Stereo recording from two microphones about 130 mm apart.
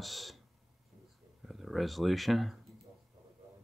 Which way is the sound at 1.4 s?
Centre (ahead or behind).